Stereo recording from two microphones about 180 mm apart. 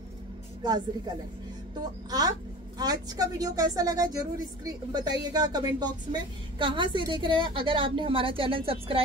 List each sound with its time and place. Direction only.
0.6 s a woman's voice: 25° right (ahead or behind)